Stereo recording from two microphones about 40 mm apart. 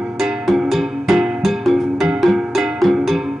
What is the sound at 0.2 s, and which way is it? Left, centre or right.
Music, centre.